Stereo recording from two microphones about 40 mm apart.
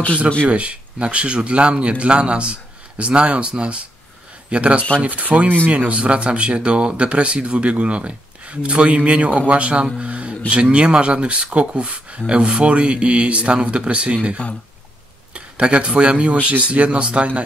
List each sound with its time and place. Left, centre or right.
0.5 s speech: right
5.8 s speech: right
9.9 s music: right
10.5 s speech: right